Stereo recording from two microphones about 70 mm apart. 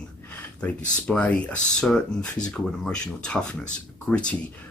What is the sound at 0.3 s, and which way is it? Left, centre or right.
Speech, centre.